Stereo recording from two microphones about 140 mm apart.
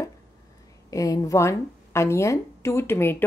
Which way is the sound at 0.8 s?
25° left (ahead or behind).